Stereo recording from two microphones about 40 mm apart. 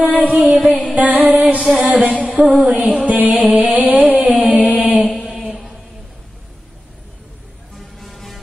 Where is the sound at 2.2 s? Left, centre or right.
Right.